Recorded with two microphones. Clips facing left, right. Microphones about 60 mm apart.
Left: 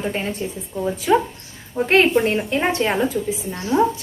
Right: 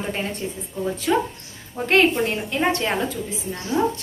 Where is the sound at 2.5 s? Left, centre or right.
Centre.